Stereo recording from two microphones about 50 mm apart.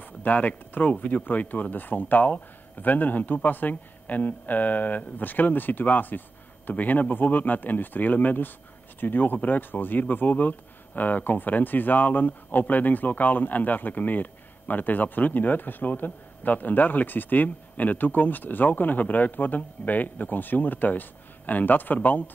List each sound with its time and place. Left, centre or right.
0.0 s speech: left